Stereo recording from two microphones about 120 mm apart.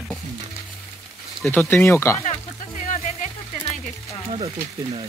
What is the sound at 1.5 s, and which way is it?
Speech, 15° left (ahead or behind).